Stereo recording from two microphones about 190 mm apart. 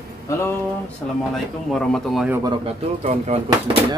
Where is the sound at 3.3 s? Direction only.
35° right (ahead or behind).